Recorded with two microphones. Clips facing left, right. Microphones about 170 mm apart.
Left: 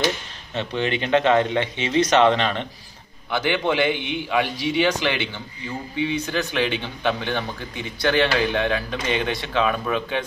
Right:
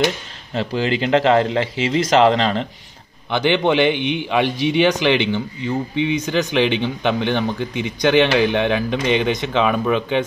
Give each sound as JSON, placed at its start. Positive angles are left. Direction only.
{"t": 0.6, "sound": "speech", "side_deg": -30}